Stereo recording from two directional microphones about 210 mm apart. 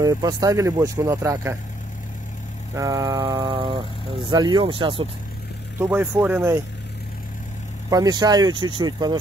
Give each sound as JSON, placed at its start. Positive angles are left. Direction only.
{"t": 0.0, "sound": "speech", "side_deg": -20}
{"t": 2.7, "sound": "speech", "side_deg": -15}
{"t": 5.8, "sound": "speech", "side_deg": -10}
{"t": 7.9, "sound": "speech", "side_deg": -20}